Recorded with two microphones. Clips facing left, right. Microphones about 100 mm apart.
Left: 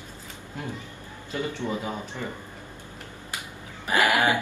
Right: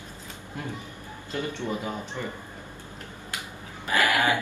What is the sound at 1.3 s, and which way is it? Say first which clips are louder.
Speech: left 1 dB; 15° left (ahead or behind).